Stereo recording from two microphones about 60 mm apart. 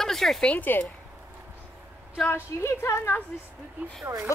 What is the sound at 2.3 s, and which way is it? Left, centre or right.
Speech, left.